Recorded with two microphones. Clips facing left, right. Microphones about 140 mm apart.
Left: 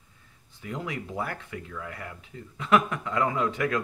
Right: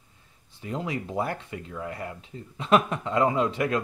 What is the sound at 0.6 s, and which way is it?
Speech, 30° right (ahead or behind).